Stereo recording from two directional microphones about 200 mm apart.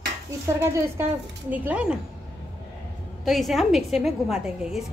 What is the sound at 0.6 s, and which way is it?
A woman's voice, 15° right (ahead or behind).